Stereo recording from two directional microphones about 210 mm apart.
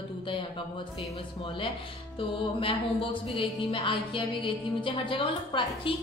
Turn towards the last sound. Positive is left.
turn(degrees=25)  # may be behind; listen again after turning